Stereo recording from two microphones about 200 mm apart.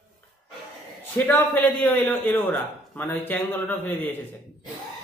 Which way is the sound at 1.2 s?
10° left (ahead or behind).